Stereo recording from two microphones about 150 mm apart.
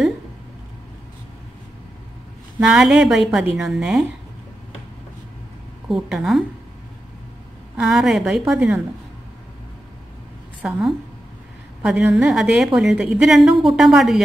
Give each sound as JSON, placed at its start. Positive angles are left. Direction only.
{"t": 2.7, "sound": "a woman's voice", "side_deg": -5}
{"t": 5.9, "sound": "a woman's voice", "side_deg": 0}
{"t": 7.7, "sound": "a woman's voice", "side_deg": -5}
{"t": 10.6, "sound": "a woman's voice", "side_deg": 0}